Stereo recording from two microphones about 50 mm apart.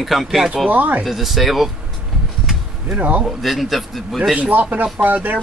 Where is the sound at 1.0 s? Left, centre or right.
Centre.